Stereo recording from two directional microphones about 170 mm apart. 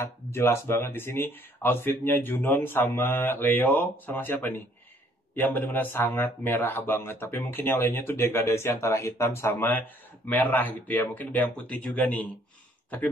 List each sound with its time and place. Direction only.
0.0 s speech: 15° left (ahead or behind)